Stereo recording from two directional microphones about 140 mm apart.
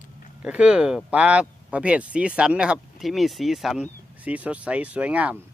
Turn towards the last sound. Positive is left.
turn(degrees=-10)  # may be behind; listen again after turning